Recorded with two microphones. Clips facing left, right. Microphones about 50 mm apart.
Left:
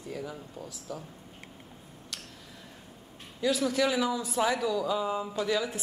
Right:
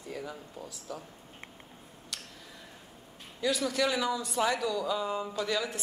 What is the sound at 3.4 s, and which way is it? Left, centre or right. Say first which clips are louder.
A man's voice: left 2 dB; centre.